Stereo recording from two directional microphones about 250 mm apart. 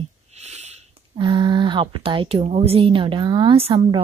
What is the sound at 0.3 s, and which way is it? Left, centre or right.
Speech, right.